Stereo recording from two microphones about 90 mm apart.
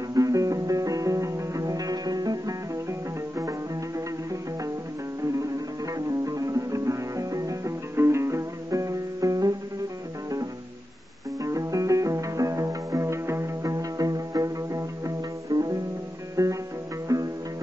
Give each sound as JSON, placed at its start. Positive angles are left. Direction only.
{"t": 0.1, "sound": "music", "side_deg": -40}
{"t": 2.9, "sound": "music", "side_deg": -35}
{"t": 5.9, "sound": "music", "side_deg": -40}
{"t": 11.4, "sound": "music", "side_deg": -40}